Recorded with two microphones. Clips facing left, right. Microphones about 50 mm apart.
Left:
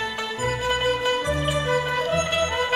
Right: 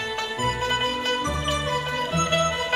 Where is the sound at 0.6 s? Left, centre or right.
Centre.